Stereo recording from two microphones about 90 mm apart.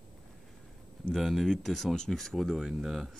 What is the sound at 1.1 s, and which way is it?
Speech, centre (ahead or behind).